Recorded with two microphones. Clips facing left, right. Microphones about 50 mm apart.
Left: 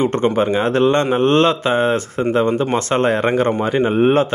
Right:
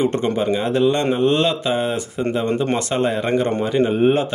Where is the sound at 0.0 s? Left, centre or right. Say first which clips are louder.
Left 3 dB; left.